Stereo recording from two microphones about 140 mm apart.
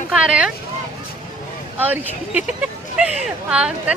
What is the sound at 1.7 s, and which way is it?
Speech, 10° right (ahead or behind).